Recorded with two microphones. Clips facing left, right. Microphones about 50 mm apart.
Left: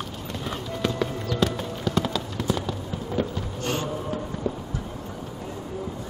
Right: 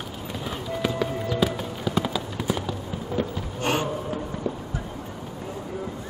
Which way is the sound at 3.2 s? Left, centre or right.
Centre.